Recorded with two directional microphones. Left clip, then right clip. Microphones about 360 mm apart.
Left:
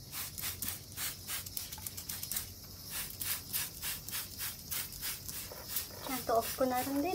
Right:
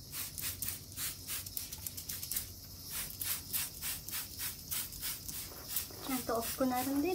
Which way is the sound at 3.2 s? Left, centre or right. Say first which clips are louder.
Left 1 dB; centre.